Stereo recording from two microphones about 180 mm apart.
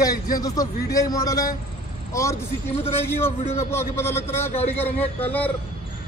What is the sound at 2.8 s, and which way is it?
A man's voice, 15° left (ahead or behind).